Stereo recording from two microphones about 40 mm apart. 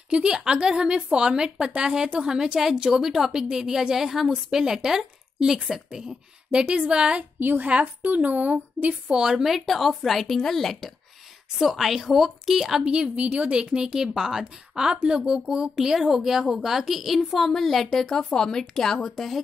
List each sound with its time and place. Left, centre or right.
0.1 s a woman's voice: right
7.3 s a woman's voice: right
7.6 s speech: right
8.0 s speech: right
9.1 s a woman's voice: centre
9.4 s a woman's voice: centre
12.8 s a woman's voice: right; by 18.6 s centre
18.9 s a woman's voice: centre